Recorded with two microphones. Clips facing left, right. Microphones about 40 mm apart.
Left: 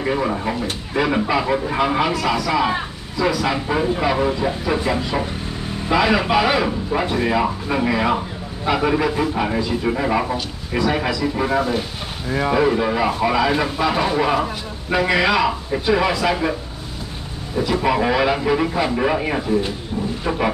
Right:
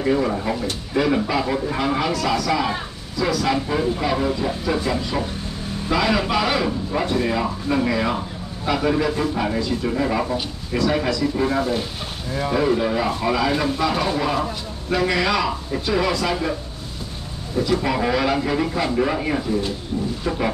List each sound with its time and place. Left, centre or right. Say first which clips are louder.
0.0 s a man's voice: even; centre
17.6 s a man's voice: left 2 dB; centre